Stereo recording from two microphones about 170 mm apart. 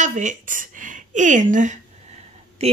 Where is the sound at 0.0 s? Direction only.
45° right (ahead or behind).